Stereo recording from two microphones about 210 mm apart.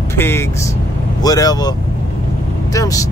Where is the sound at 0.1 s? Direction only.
10° left (ahead or behind).